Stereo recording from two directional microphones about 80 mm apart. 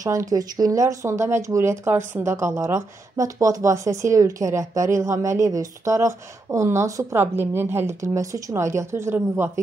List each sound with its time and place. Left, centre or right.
0.0 s speech: right
7.2 s speech: right